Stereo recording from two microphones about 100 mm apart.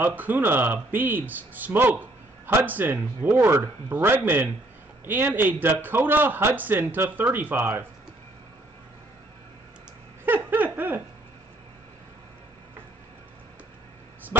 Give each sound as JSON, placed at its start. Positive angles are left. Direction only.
{"t": 0.0, "sound": "a man's voice", "side_deg": -15}
{"t": 10.2, "sound": "a sound", "side_deg": -20}
{"t": 14.3, "sound": "speech", "side_deg": -25}